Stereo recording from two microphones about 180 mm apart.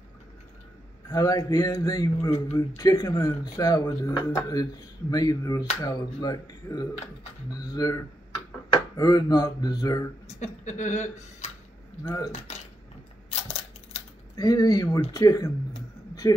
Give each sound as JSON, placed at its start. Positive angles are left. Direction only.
{"t": 1.1, "sound": "speech", "side_deg": 20}
{"t": 10.4, "sound": "speech", "side_deg": 40}
{"t": 12.0, "sound": "speech", "side_deg": 15}
{"t": 12.3, "sound": "speech", "side_deg": 40}
{"t": 13.3, "sound": "camera", "side_deg": 35}
{"t": 14.3, "sound": "speech", "side_deg": 20}